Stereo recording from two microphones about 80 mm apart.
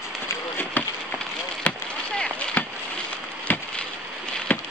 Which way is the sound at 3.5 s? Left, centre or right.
Left.